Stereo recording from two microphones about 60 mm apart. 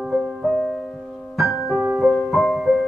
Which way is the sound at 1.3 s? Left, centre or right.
Centre.